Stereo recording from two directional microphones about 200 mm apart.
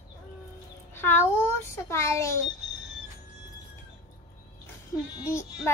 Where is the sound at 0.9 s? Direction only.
10° left (ahead or behind).